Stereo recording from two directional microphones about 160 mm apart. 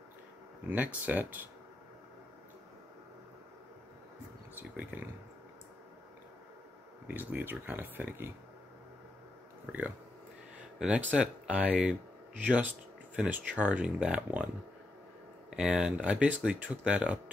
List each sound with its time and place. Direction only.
0.7 s speech: 10° right (ahead or behind)
4.6 s speech: 10° right (ahead or behind)
7.1 s speech: 10° right (ahead or behind)
9.7 s speech: 10° right (ahead or behind)
11.1 s speech: 10° right (ahead or behind)
15.5 s speech: 5° right (ahead or behind)